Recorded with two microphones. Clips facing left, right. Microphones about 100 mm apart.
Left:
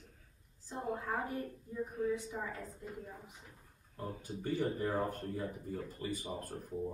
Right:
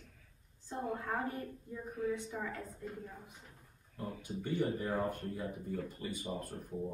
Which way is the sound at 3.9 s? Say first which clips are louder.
Right 1 dB; 40° left (ahead or behind).